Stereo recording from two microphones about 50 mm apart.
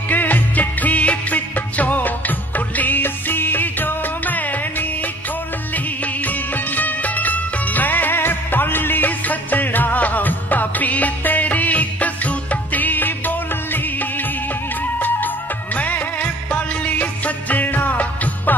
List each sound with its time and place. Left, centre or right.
0.1 s music: left
6.2 s music: left
15.0 s music: left